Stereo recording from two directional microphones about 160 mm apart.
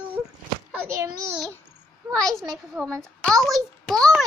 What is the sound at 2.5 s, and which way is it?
A child's voice, centre (ahead or behind).